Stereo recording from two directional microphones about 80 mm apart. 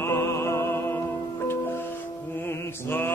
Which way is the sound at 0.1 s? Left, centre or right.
Left.